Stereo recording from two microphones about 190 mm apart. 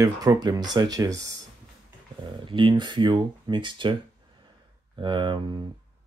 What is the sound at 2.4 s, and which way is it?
Speech, 25° right (ahead or behind).